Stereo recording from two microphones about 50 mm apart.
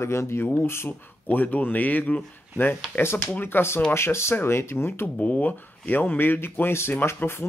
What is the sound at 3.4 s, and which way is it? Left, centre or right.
Speech, left.